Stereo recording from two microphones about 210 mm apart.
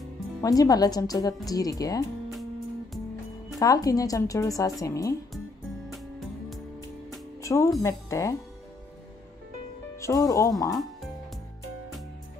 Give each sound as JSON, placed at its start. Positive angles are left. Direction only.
{"t": 0.4, "sound": "speech", "side_deg": 15}
{"t": 3.5, "sound": "speech", "side_deg": 15}
{"t": 7.4, "sound": "speech", "side_deg": 15}
{"t": 9.9, "sound": "speech", "side_deg": 15}